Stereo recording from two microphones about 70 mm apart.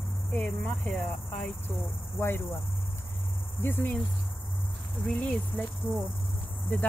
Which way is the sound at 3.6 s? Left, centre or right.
Left.